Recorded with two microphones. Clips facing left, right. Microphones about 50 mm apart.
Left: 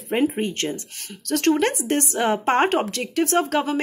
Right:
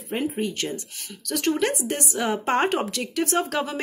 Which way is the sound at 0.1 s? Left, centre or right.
Left.